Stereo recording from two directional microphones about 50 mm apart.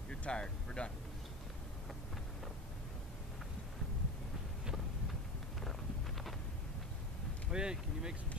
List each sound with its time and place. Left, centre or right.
0.2 s speech: centre
5.6 s a sound: centre
7.5 s speech: centre